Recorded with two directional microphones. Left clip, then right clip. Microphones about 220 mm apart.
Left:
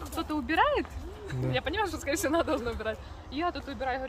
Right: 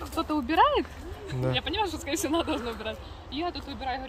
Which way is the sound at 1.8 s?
25° left (ahead or behind).